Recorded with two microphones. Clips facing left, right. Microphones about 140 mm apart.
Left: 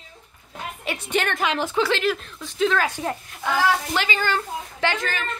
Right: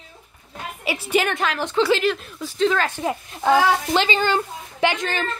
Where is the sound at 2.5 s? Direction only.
5° left (ahead or behind).